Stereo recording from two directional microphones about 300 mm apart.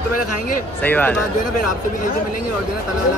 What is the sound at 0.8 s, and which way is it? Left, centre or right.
Speech, centre.